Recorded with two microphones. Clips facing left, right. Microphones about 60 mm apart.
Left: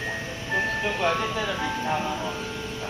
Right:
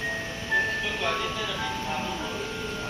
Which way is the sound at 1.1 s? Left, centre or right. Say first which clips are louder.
Left 4 dB; centre.